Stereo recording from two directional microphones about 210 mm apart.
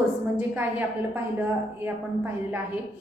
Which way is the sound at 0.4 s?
10° right (ahead or behind).